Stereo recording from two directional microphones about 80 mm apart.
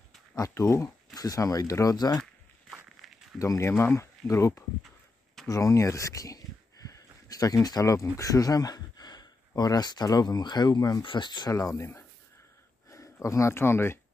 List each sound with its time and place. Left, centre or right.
0.4 s speech: left
1.1 s speech: left
3.0 s a sound: centre
3.3 s speech: left
6.9 s a sound: left
9.6 s speech: left
11.1 s speech: left
11.5 s speech: left